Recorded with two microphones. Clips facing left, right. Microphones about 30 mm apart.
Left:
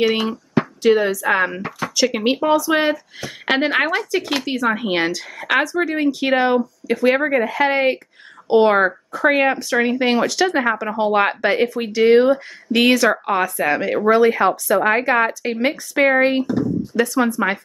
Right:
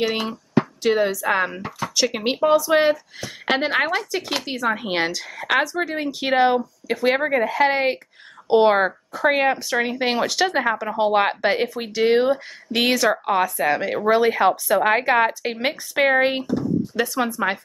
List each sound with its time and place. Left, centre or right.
0.0 s speech: centre
2.0 s speech: centre
3.2 s speech: centre
10.6 s speech: centre